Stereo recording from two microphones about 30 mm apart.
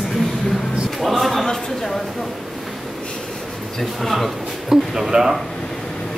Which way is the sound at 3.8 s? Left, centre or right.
Centre.